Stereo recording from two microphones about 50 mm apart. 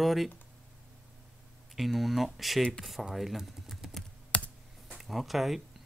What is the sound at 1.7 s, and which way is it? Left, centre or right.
A man's voice, centre.